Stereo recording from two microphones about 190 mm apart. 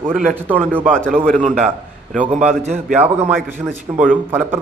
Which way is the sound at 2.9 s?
5° right (ahead or behind).